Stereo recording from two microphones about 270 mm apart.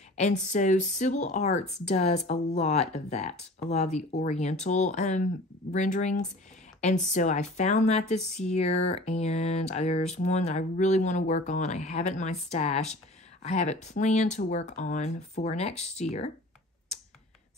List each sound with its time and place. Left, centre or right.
0.1 s speech: left